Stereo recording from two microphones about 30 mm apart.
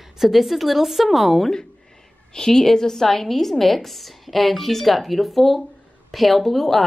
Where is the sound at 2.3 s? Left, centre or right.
Centre.